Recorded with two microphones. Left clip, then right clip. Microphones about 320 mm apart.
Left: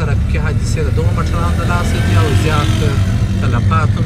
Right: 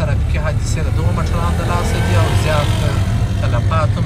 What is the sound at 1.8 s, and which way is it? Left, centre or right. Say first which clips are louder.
Speech: left 1 dB; right.